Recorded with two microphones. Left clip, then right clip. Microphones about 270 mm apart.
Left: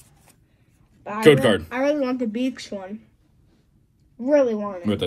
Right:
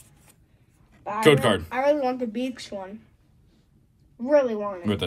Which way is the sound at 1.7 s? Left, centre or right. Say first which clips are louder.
Even; left.